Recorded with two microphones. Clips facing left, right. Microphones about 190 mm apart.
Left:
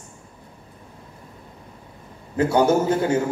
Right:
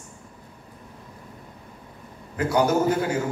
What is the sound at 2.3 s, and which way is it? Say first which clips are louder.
Speech: left 4 dB; 25° left (ahead or behind).